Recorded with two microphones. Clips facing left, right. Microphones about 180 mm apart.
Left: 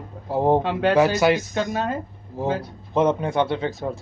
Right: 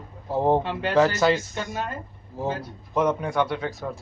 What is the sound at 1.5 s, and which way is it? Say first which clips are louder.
Speech: left 6 dB; 90° left.